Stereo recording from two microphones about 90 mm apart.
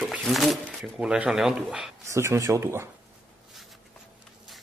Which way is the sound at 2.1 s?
35° right (ahead or behind).